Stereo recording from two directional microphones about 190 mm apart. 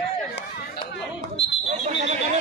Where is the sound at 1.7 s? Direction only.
40° right (ahead or behind).